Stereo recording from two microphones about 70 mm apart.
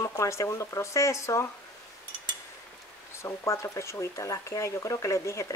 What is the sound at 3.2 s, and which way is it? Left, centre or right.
Speech, left.